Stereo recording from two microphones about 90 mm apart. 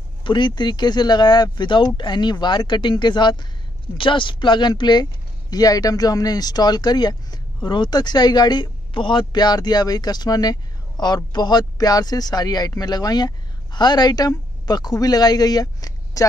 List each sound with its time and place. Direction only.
0.2 s speech: 60° left (ahead or behind)
4.0 s speech: 70° left (ahead or behind)
5.5 s speech: 45° left (ahead or behind)